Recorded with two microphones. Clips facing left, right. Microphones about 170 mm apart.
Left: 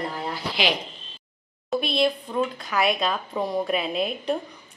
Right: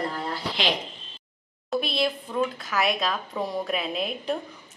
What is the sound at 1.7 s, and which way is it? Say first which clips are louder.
Speech: left 3 dB; centre (ahead or behind).